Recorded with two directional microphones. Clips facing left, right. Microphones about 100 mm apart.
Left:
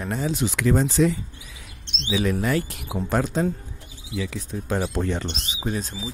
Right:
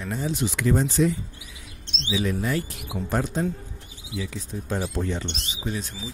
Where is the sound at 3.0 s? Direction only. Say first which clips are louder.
Left 3 dB; 90° left.